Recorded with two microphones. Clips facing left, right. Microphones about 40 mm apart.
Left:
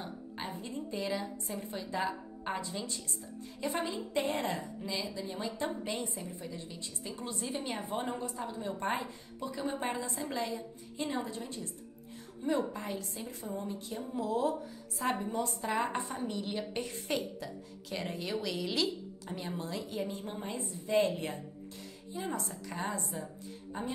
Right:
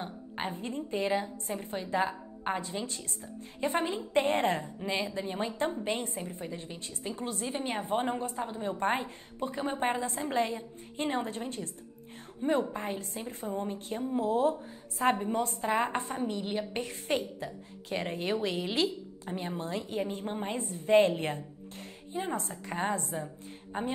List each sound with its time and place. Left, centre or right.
0.0 s a woman's voice: right
7.9 s a woman's voice: right
16.7 s a woman's voice: right
23.2 s a sound: right